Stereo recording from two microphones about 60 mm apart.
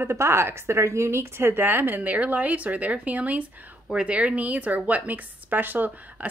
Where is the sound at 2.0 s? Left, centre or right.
Right.